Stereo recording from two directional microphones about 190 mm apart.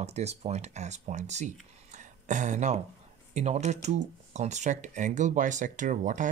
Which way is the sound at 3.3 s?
35° right (ahead or behind).